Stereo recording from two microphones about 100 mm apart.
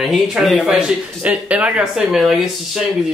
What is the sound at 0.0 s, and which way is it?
Speech, centre (ahead or behind).